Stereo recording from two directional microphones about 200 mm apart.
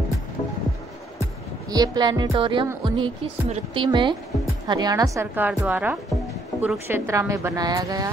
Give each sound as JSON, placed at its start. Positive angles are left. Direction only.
{"t": 1.7, "sound": "a woman's voice", "side_deg": -20}